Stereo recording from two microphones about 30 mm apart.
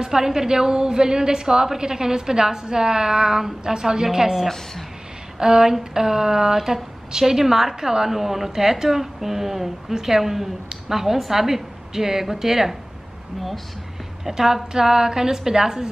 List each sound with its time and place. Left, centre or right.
0.0 s a woman's voice: centre
5.4 s a sound: right
14.2 s a woman's voice: centre